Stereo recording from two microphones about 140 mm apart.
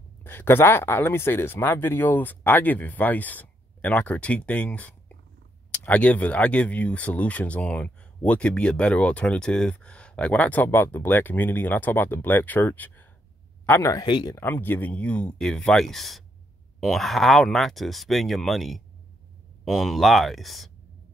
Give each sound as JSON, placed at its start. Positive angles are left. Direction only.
{"t": 0.2, "sound": "speech", "side_deg": 15}
{"t": 14.0, "sound": "speech", "side_deg": 30}
{"t": 14.4, "sound": "speech", "side_deg": 15}